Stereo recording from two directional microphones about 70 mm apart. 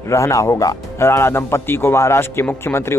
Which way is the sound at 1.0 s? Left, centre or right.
Left.